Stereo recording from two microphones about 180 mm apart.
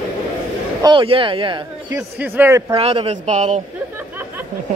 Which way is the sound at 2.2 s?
15° right (ahead or behind).